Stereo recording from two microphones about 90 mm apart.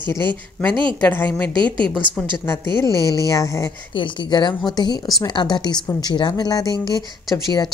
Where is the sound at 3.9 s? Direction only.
65° left (ahead or behind).